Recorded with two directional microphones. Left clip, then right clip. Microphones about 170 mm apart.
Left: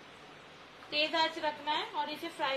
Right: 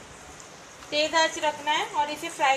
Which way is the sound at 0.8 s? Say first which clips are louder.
Right 7 dB; 55° right (ahead or behind).